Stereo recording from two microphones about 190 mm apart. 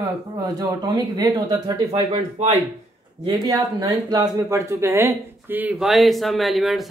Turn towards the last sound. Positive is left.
turn(degrees=0)  # may be behind; listen again after turning